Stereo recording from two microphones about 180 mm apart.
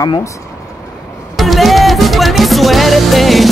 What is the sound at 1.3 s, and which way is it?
Music, centre (ahead or behind).